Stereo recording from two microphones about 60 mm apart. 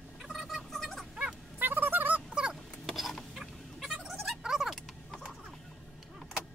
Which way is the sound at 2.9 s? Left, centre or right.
Centre.